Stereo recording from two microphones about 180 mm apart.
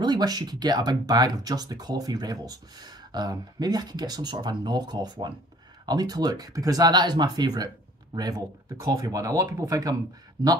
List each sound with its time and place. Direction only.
0.0 s speech: 25° right (ahead or behind)